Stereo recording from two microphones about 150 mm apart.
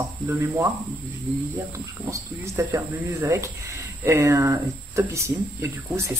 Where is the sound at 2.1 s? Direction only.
20° right (ahead or behind).